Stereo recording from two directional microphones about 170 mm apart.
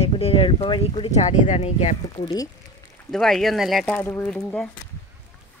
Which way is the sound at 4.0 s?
15° left (ahead or behind).